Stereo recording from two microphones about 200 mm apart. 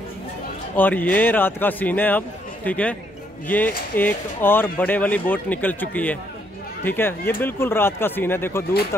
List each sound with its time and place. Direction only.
0.7 s speech: 10° left (ahead or behind)